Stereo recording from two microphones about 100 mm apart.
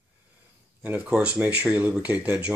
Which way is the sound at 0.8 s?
15° right (ahead or behind).